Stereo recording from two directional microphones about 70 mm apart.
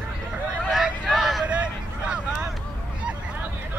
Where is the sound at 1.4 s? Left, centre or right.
Centre.